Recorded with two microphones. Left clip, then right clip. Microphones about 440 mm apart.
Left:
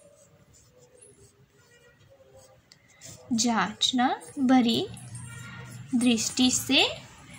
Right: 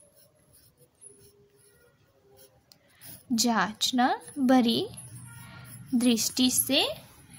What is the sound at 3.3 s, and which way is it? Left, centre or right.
A woman's voice, right.